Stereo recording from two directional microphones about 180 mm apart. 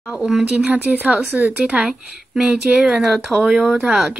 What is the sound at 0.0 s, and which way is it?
Speech, 5° right (ahead or behind).